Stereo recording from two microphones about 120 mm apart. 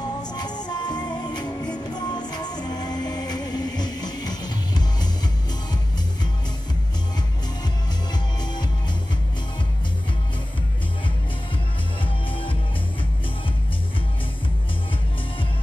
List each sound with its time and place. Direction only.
0.0 s music: 35° left (ahead or behind)
8.1 s music: 35° left (ahead or behind)
12.0 s music: 45° left (ahead or behind)